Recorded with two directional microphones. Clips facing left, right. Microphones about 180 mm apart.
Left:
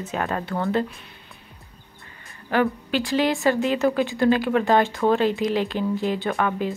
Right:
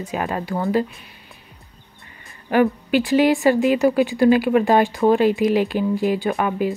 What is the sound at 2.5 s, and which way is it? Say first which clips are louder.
Speech: right 5 dB; 15° right (ahead or behind).